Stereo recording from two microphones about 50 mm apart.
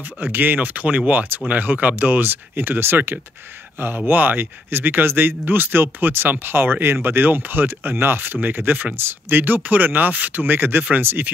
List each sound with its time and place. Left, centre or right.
0.2 s speech: right
4.1 s speech: right